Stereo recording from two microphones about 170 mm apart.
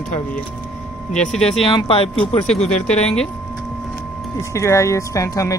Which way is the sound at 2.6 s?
45° left (ahead or behind).